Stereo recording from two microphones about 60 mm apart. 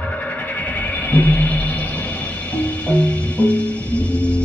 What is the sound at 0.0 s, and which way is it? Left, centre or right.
Music, left.